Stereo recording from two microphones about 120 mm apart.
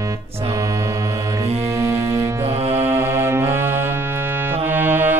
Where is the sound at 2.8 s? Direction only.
20° right (ahead or behind).